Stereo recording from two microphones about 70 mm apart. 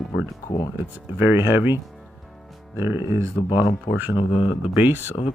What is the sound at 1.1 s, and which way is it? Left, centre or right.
Speech, right.